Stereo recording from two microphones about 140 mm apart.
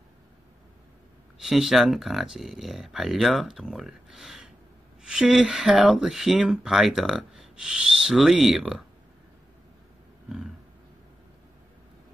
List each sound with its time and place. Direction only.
1.4 s speech: centre (ahead or behind)